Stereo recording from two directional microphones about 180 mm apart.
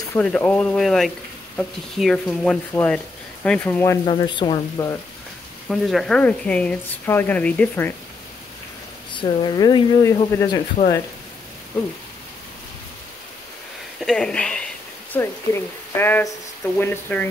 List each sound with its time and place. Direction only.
0.1 s speech: 10° left (ahead or behind)
4.0 s speech: 30° left (ahead or behind)
5.7 s speech: centre (ahead or behind)
9.1 s speech: 25° left (ahead or behind)
13.9 s a sound: 5° left (ahead or behind)
15.1 s speech: 10° left (ahead or behind)